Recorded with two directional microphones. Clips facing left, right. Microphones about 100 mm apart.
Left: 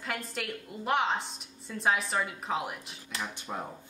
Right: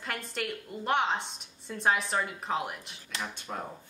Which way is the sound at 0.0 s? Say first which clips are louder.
Even; centre (ahead or behind).